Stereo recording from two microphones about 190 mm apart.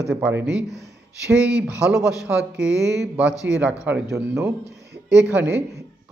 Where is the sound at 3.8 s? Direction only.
10° right (ahead or behind).